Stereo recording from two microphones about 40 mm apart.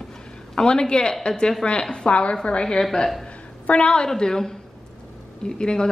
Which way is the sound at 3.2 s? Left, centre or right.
Left.